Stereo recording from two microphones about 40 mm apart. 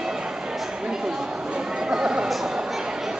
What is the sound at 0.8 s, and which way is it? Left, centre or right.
Chatter, right.